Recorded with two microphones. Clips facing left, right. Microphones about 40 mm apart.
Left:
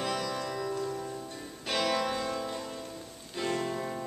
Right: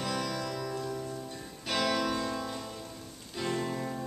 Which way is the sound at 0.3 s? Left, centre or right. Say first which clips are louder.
Left 1 dB; left.